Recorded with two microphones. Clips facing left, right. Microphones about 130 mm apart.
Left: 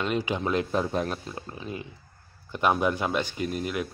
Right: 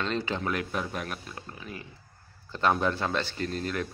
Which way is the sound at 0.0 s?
10° left (ahead or behind).